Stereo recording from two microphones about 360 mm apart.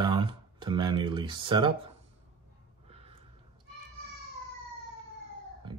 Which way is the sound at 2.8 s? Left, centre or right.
Centre.